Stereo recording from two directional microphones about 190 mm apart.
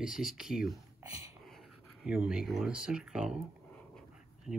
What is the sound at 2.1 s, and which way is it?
Speech, 5° right (ahead or behind).